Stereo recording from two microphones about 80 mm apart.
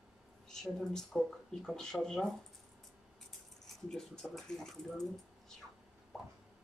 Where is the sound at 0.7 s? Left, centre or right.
Centre.